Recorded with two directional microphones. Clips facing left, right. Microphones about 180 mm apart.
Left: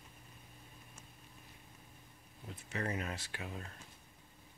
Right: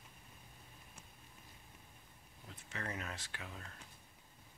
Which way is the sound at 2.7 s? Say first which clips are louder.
Left 5 dB; 15° left (ahead or behind).